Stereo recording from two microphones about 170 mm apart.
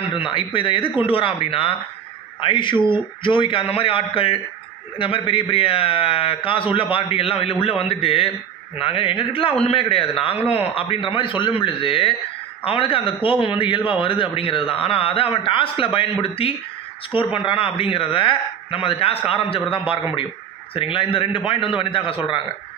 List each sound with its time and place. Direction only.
0.1 s a man's voice: 30° left (ahead or behind)